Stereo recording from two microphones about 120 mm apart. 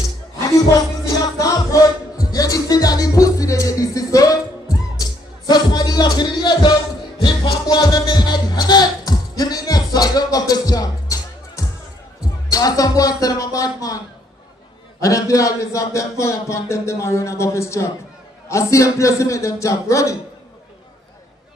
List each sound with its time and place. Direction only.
1.0 s music: 30° left (ahead or behind)
12.2 s a man's voice: 30° left (ahead or behind)